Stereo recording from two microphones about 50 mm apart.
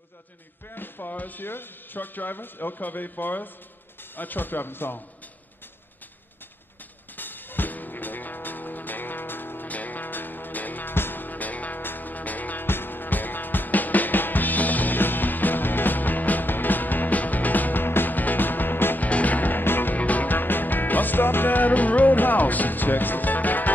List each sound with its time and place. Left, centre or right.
0.7 s speech: left
7.2 s music: left
12.6 s music: left
19.0 s music: left